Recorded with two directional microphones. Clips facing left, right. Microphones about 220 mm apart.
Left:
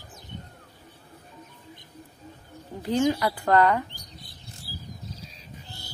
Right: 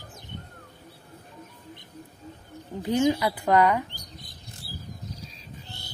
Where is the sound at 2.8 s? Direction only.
15° right (ahead or behind).